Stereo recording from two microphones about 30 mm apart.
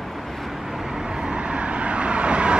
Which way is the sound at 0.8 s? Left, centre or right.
Right.